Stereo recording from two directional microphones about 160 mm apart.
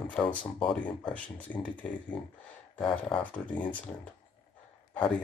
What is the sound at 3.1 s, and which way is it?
Speech, 10° left (ahead or behind).